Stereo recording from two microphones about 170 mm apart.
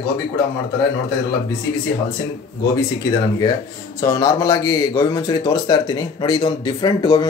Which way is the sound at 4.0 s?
20° left (ahead or behind).